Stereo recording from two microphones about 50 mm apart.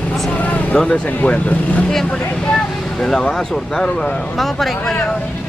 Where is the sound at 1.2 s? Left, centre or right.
Left.